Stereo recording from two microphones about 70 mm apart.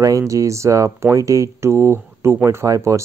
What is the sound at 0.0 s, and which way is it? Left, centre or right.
Speech, right.